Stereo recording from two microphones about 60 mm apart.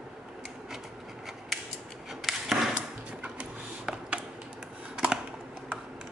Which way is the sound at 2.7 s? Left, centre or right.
Right.